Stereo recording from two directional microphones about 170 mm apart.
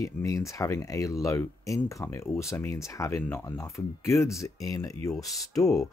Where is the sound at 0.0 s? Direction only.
20° left (ahead or behind).